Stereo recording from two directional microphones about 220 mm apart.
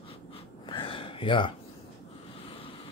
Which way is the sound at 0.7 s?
25° left (ahead or behind).